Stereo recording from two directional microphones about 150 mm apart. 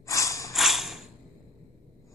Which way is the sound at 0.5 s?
Centre (ahead or behind).